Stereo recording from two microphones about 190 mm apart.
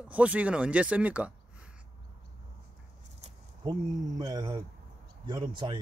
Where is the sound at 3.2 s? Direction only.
35° right (ahead or behind).